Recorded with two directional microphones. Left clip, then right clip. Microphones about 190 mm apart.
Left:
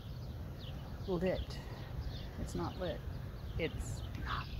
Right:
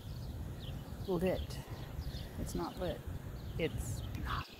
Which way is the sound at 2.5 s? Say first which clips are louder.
Right 1 dB; centre (ahead or behind).